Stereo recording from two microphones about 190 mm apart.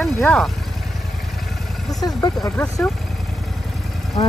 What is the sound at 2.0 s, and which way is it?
Speech, 20° left (ahead or behind).